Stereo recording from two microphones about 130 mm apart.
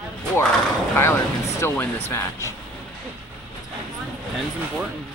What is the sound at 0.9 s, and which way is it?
Speech, 20° left (ahead or behind).